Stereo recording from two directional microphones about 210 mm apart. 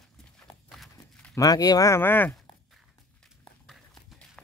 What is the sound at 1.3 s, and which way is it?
Speech, 15° left (ahead or behind).